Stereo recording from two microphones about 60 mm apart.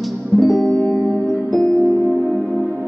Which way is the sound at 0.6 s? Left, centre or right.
Centre.